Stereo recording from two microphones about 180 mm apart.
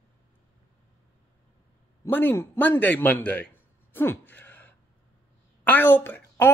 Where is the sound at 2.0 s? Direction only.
10° left (ahead or behind).